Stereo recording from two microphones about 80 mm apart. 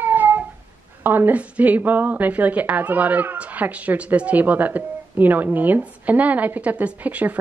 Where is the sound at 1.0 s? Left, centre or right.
Right.